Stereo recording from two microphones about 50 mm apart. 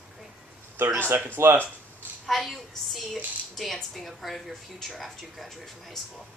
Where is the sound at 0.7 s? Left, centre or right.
Right.